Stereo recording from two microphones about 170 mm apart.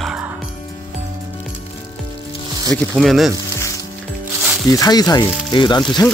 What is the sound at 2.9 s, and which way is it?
Music, centre (ahead or behind).